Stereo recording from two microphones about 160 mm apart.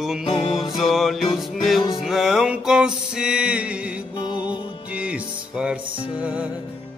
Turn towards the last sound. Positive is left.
turn(degrees=-10)  # may be behind; listen again after turning